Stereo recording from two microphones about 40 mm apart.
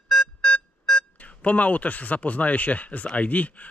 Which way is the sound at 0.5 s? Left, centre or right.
Left.